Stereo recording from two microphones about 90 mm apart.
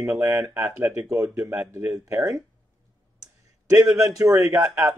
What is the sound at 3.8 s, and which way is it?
Speech, 30° right (ahead or behind).